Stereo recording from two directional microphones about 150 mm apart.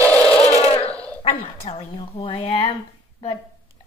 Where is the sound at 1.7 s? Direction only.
45° left (ahead or behind).